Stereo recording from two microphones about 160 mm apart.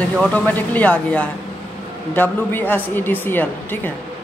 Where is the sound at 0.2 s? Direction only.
10° left (ahead or behind).